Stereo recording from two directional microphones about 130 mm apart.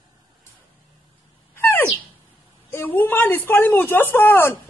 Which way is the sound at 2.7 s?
15° left (ahead or behind).